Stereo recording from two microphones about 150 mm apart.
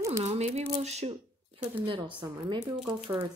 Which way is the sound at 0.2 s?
45° right (ahead or behind).